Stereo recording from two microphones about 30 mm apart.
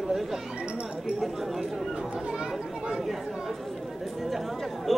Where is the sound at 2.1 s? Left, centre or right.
Right.